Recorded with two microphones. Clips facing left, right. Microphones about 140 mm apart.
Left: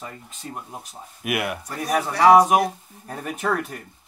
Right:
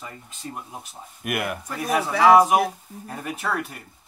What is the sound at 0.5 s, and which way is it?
Speech, centre (ahead or behind).